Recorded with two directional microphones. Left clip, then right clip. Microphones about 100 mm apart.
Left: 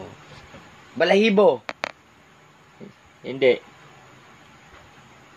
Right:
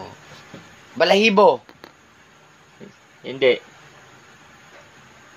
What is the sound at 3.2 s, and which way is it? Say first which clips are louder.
Speech: right 1 dB; 30° left (ahead or behind).